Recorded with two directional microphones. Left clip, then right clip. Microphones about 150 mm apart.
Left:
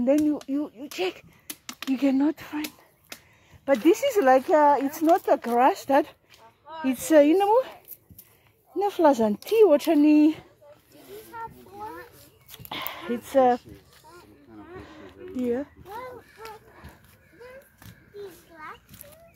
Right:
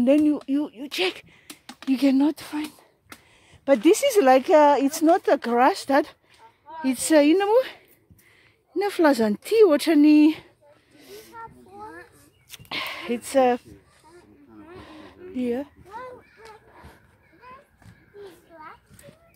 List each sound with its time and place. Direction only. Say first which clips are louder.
0.2 s speech: right 3 dB; 70° right (ahead or behind)
2.0 s speech: right 3 dB; 45° right (ahead or behind)
3.6 s a woman's voice: right 3 dB; 60° right (ahead or behind)
8.7 s speech: even; 50° right (ahead or behind)
12.4 s a sound: right 4 dB; 30° right (ahead or behind)
14.9 s a sound: even; 35° right (ahead or behind)